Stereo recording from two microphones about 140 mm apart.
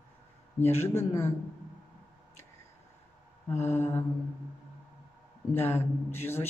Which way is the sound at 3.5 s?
15° left (ahead or behind).